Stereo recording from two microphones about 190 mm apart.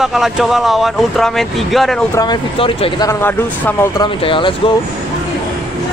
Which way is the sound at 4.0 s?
25° left (ahead or behind).